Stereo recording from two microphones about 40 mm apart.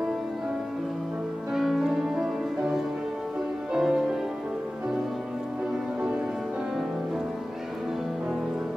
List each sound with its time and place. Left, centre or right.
1.6 s music: centre